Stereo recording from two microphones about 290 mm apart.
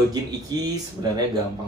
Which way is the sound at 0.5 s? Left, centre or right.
Centre.